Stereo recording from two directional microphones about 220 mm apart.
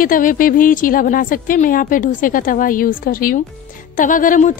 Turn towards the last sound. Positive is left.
turn(degrees=35)  # may be behind; listen again after turning